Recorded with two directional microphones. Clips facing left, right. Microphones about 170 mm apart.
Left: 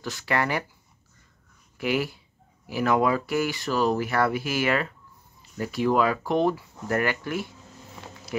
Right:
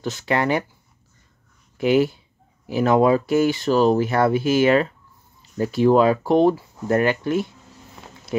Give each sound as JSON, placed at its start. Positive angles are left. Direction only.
{"t": 0.0, "sound": "speech", "side_deg": -20}
{"t": 1.8, "sound": "speech", "side_deg": -25}